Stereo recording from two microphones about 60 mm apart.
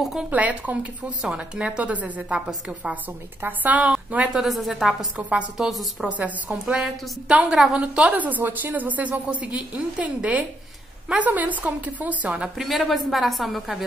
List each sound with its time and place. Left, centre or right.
0.0 s a woman's voice: centre
0.3 s a woman's voice: right
1.2 s a woman's voice: centre
4.3 s a woman's voice: centre
5.1 s a woman's voice: right
5.6 s a woman's voice: centre
5.9 s a woman's voice: right
6.6 s a woman's voice: centre
8.1 s a woman's voice: right
12.3 s a woman's voice: centre